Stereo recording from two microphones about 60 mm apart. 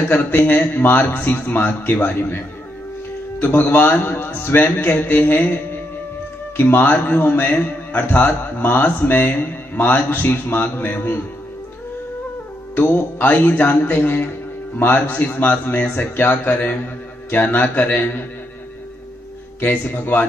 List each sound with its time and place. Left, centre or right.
0.1 s speech: left
0.7 s a man's voice: left
12.7 s speech: left
15.9 s a man's voice: left
19.6 s speech: left